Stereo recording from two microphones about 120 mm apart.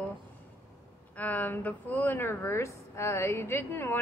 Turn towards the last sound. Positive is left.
turn(degrees=20)  # may be behind; listen again after turning